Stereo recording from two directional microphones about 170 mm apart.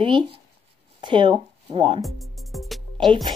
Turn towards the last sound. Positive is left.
turn(degrees=0)  # may be behind; listen again after turning